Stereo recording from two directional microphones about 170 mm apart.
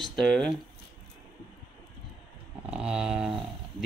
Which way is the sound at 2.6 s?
5° right (ahead or behind).